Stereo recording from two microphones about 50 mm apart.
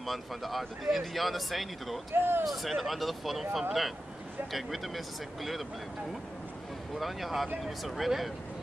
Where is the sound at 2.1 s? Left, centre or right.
Right.